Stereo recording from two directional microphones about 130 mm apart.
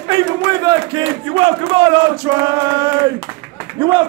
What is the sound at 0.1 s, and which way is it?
Speech, 30° right (ahead or behind).